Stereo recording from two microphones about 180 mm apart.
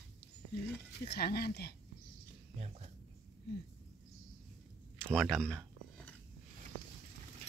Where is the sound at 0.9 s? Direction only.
65° left (ahead or behind).